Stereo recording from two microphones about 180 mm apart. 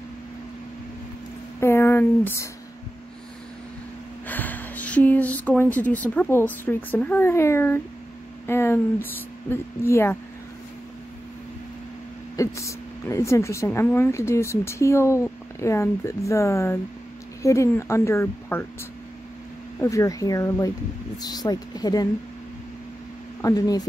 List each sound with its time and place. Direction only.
1.6 s speech: 15° left (ahead or behind)
4.3 s speech: 10° left (ahead or behind)
12.4 s speech: 15° left (ahead or behind)
19.8 s speech: 15° left (ahead or behind)
23.4 s speech: 20° left (ahead or behind)